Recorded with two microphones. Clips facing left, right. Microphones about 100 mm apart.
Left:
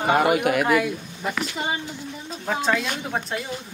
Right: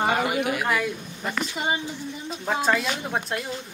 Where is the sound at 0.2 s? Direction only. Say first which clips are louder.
Left 5 dB; 55° left (ahead or behind).